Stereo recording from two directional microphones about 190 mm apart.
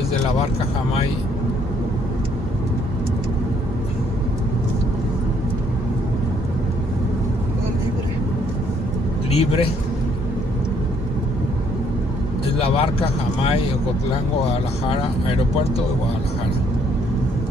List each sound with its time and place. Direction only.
9.3 s a man's voice: 30° left (ahead or behind)
12.5 s speech: 30° left (ahead or behind)